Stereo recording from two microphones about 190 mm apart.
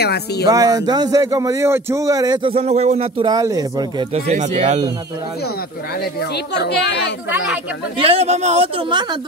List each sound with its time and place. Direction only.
0.0 s a woman's voice: 60° left (ahead or behind)
0.5 s a man's voice: 20° right (ahead or behind)
3.3 s a man's voice: 20° right (ahead or behind)
4.1 s a man's voice: 35° right (ahead or behind)
6.3 s a woman's voice: 60° left (ahead or behind)
8.0 s a man's voice: 30° right (ahead or behind)